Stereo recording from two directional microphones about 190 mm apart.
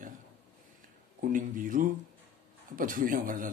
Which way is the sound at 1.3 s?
45° right (ahead or behind).